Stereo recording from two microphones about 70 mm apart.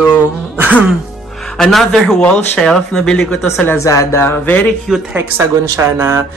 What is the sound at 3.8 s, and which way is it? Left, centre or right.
Speech, left.